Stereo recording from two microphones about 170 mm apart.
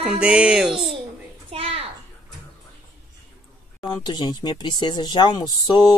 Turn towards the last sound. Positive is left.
turn(degrees=25)  # may be behind; listen again after turning